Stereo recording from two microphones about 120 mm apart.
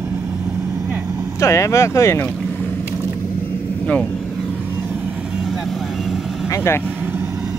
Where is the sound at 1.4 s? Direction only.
25° left (ahead or behind).